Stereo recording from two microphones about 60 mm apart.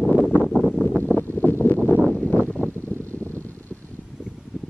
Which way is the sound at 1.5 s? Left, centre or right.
Left.